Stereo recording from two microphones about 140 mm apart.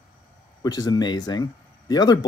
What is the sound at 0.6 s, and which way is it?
Speech, 30° left (ahead or behind).